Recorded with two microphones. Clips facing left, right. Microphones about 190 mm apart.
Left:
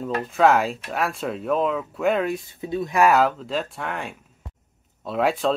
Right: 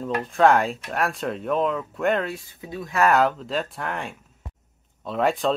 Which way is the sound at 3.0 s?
5° left (ahead or behind).